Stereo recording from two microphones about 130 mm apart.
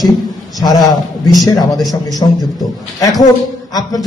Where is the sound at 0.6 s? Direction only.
30° left (ahead or behind).